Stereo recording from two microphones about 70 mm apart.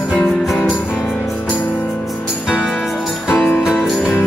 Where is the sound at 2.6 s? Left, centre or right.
Centre.